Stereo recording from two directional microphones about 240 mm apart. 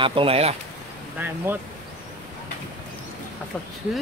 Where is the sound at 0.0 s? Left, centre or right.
Right.